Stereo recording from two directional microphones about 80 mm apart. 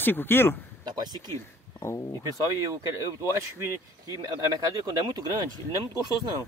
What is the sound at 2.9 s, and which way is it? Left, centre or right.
Speech, right.